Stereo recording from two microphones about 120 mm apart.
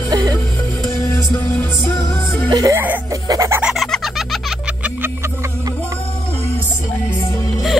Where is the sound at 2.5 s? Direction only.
30° right (ahead or behind).